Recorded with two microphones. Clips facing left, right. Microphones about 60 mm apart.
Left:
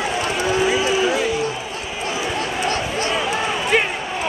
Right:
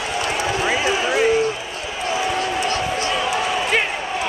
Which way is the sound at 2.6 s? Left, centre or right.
Left.